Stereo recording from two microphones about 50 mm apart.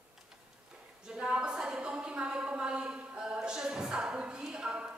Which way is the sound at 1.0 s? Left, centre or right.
Centre.